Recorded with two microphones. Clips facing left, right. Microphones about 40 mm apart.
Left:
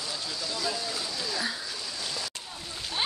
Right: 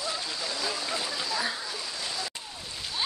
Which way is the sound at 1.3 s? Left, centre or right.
Centre.